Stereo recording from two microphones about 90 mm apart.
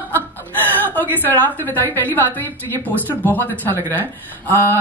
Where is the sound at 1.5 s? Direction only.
20° left (ahead or behind).